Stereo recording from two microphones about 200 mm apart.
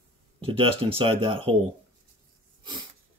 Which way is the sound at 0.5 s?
30° right (ahead or behind).